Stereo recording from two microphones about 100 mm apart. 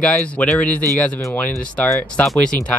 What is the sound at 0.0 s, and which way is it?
Speech, 10° left (ahead or behind).